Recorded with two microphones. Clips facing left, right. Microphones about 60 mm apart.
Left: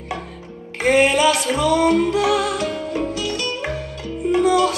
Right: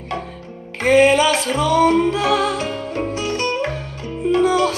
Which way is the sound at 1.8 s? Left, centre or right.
Right.